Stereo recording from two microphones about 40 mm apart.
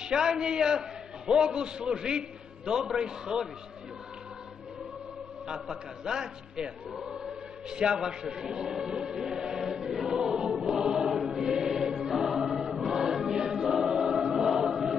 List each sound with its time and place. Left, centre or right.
0.0 s a man's voice: centre
5.5 s a man's voice: centre
7.0 s choir: centre